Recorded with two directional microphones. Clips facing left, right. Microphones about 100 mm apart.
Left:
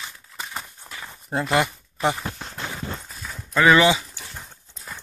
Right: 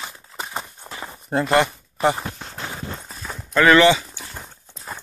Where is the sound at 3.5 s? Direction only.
10° left (ahead or behind).